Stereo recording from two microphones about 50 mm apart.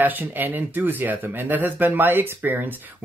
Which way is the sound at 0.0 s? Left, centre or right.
Right.